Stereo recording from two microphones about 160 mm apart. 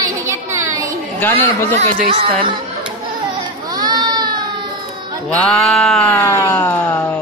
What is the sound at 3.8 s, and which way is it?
Baby cry, 25° right (ahead or behind).